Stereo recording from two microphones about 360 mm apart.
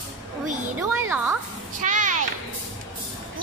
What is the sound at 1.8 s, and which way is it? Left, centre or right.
Speech, right.